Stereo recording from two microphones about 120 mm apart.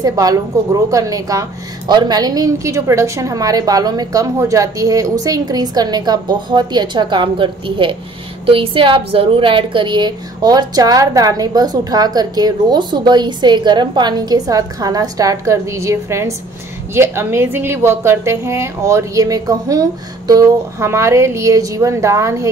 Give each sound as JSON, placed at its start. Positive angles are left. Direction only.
{"t": 0.0, "sound": "a woman's voice", "side_deg": -30}